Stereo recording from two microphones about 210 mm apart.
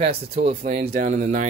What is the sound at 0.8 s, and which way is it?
Speech, 50° right (ahead or behind).